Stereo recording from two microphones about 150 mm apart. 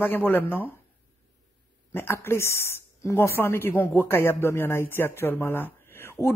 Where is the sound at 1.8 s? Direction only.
15° left (ahead or behind).